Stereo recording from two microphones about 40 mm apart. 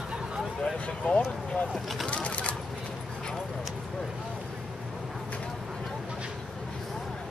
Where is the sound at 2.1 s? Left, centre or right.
Left.